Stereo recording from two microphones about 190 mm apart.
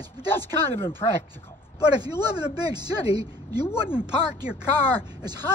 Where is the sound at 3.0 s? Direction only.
30° left (ahead or behind).